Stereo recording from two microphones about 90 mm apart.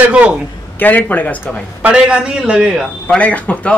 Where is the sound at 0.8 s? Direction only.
20° left (ahead or behind).